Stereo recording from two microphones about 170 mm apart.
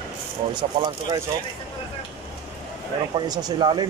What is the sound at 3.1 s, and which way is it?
Speech, 25° right (ahead or behind).